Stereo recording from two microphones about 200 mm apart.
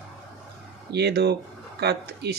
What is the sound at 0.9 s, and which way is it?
Speech, 55° right (ahead or behind).